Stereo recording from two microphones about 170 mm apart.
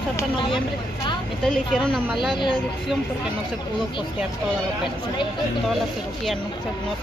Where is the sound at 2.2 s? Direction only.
30° left (ahead or behind).